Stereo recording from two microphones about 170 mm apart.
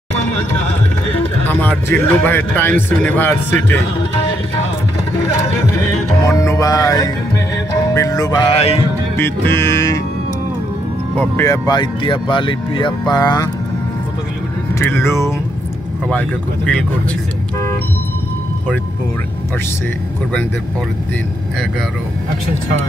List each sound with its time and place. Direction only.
1.5 s a man's voice: 10° left (ahead or behind)
6.2 s music: 20° left (ahead or behind)
8.5 s music: 35° left (ahead or behind)
9.1 s a man's voice: 15° left (ahead or behind)
11.1 s speech: 15° left (ahead or behind)
14.8 s a man's voice: 15° left (ahead or behind)